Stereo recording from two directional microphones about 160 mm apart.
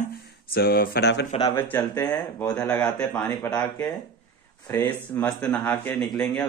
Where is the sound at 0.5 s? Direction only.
70° left (ahead or behind); by 1.3 s 90° left.